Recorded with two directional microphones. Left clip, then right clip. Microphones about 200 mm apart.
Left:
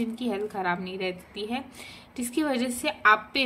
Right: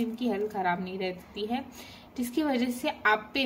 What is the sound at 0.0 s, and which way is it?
A woman's voice, 25° left (ahead or behind).